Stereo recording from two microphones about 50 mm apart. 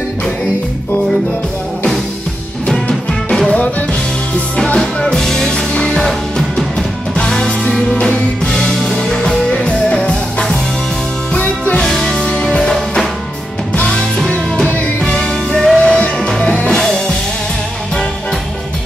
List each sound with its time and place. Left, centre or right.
2.7 s music: centre
4.7 s music: centre
5.5 s music: centre
8.9 s music: centre
11.3 s music: left
11.8 s music: centre
13.7 s music: left
15.8 s music: left